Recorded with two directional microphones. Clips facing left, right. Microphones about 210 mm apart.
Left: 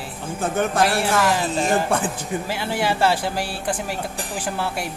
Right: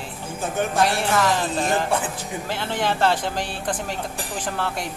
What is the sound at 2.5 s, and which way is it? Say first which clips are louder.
Speech: even; 10° left (ahead or behind).